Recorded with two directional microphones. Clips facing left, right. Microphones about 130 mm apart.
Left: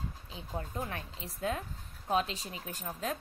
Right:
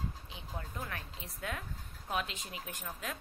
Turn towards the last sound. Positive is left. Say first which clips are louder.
# left 5 dB
turn(degrees=30)  # may be behind; listen again after turning